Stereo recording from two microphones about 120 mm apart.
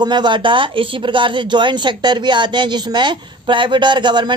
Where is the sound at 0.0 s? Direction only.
40° right (ahead or behind).